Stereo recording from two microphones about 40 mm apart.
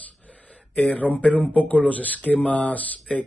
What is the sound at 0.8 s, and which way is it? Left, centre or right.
Speech, left.